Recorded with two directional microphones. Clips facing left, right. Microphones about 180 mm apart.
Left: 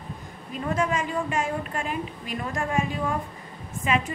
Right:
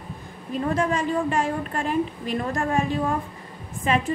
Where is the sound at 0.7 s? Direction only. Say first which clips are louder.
Right 2 dB; 35° right (ahead or behind).